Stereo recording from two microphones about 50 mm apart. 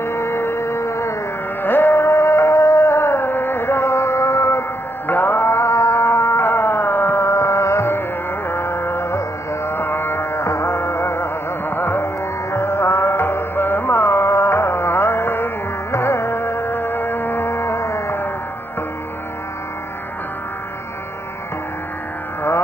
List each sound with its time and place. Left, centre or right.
0.0 s music: left
1.6 s music: left
5.0 s music: left
8.5 s music: left
11.7 s music: left
12.5 s music: left
15.9 s music: left